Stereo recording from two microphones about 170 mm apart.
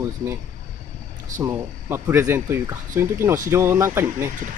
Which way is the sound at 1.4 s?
15° right (ahead or behind).